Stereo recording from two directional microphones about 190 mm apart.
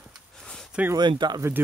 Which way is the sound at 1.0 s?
25° right (ahead or behind).